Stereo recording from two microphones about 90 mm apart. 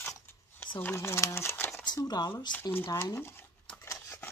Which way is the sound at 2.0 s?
45° left (ahead or behind).